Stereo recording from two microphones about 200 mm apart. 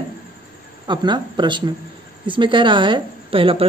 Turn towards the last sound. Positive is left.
turn(degrees=-25)  # may be behind; listen again after turning